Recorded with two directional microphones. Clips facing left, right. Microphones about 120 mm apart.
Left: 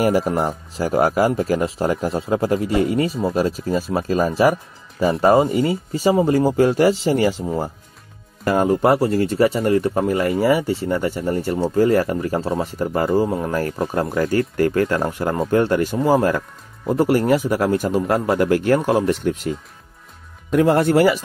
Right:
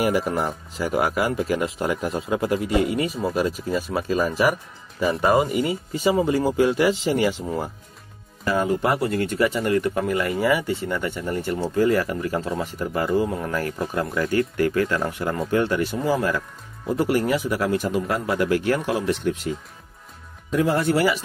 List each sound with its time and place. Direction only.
0.0 s speech: 35° left (ahead or behind)
8.5 s speech: 45° left (ahead or behind)
20.5 s speech: 55° left (ahead or behind)